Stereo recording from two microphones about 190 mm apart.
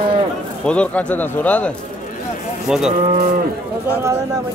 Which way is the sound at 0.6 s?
5° left (ahead or behind).